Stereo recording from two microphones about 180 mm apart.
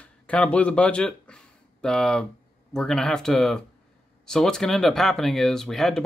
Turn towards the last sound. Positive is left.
turn(degrees=0)  # may be behind; listen again after turning